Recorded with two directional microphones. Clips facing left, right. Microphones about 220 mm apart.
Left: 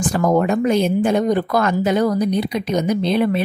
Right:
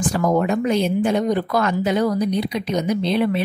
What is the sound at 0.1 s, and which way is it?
Speech, 50° left (ahead or behind).